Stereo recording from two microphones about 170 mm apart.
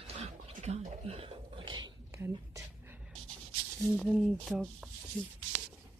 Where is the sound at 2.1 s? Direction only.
15° right (ahead or behind).